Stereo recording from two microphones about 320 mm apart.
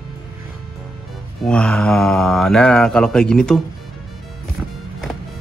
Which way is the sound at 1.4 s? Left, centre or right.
Centre.